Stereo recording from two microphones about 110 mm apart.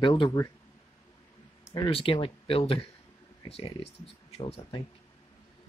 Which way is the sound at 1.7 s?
55° left (ahead or behind).